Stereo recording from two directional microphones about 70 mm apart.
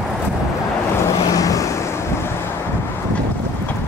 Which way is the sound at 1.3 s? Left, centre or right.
Left.